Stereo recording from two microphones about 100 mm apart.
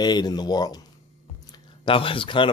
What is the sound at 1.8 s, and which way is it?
Speech, 60° left (ahead or behind).